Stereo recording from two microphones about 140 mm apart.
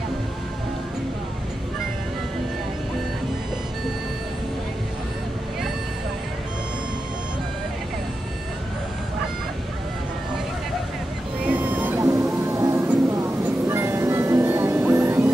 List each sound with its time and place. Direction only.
11.4 s vehicle: 10° right (ahead or behind)
12.0 s vehicle: 25° right (ahead or behind)
12.4 s a sound: 20° right (ahead or behind)
13.7 s music: 20° right (ahead or behind)